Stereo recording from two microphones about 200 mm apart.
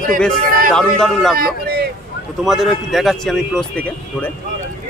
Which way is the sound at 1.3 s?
50° right (ahead or behind).